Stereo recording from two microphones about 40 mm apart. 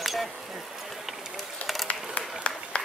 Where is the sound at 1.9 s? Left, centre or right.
Left.